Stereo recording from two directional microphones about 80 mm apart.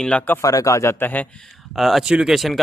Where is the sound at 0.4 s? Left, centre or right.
Left.